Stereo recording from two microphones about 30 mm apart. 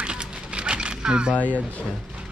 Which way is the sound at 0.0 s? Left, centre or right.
Right.